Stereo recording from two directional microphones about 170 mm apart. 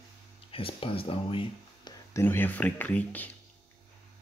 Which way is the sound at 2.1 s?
10° left (ahead or behind).